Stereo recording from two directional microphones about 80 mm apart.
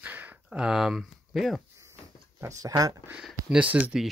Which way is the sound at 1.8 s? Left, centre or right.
Right.